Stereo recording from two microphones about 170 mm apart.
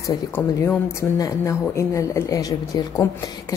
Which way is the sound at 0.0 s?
15° left (ahead or behind).